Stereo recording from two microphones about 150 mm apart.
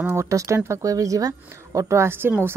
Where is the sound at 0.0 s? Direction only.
15° right (ahead or behind).